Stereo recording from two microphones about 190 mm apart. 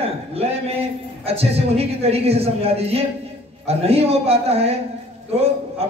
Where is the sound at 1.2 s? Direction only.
30° right (ahead or behind).